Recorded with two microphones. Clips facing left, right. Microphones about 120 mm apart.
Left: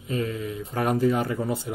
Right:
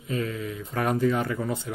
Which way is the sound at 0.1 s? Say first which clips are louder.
Left 1 dB; 30° left (ahead or behind).